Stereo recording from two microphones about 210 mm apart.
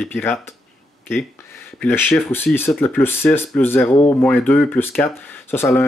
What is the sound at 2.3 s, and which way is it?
Speech, 10° left (ahead or behind).